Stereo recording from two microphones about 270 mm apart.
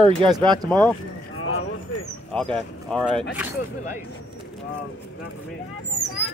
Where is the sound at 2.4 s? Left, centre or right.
Centre.